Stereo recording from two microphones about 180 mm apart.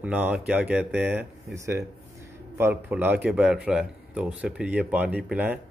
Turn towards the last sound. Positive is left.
turn(degrees=-10)  # may be behind; listen again after turning